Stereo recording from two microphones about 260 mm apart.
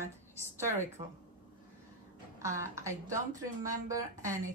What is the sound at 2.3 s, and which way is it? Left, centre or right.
A woman's voice, centre.